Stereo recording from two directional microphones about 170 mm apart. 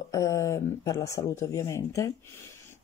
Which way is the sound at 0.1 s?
20° left (ahead or behind).